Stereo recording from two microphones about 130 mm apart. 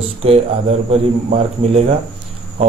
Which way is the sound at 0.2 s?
50° right (ahead or behind).